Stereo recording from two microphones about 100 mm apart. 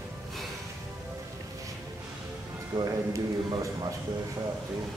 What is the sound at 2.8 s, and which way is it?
A man's voice, 40° right (ahead or behind).